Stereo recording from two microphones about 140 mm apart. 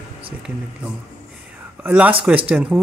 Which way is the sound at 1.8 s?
10° right (ahead or behind).